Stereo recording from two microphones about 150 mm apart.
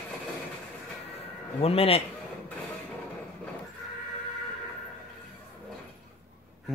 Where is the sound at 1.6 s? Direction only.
40° left (ahead or behind).